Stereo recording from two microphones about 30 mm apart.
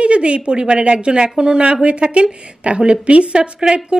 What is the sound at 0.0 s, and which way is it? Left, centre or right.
Speech, right.